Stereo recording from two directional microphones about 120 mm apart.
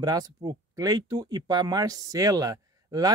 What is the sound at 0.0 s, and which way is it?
Speech, 30° right (ahead or behind).